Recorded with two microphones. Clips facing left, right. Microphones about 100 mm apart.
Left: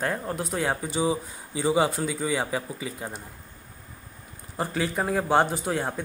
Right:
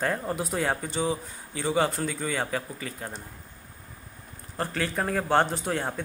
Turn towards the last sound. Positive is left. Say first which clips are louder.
# left 1 dB
turn(degrees=5)  # may be behind; listen again after turning